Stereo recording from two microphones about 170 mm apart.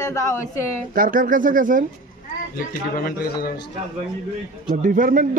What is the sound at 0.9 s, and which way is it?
Speech, 55° right (ahead or behind).